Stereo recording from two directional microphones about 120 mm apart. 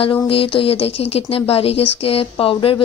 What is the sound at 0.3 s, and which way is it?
Speech, 50° left (ahead or behind).